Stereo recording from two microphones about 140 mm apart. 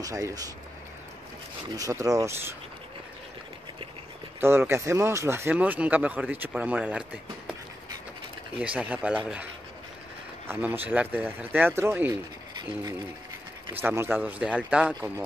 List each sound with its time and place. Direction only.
0.0 s speech: 25° right (ahead or behind)
1.8 s speech: 25° right (ahead or behind)
4.4 s speech: 15° right (ahead or behind)
8.5 s speech: 10° right (ahead or behind)
10.5 s speech: 15° right (ahead or behind)
13.7 s speech: 15° right (ahead or behind)